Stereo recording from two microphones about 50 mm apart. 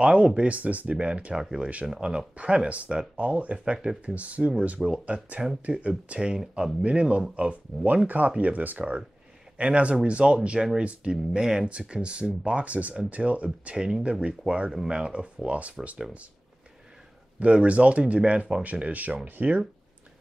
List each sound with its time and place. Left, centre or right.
0.0 s speech: centre
17.4 s speech: right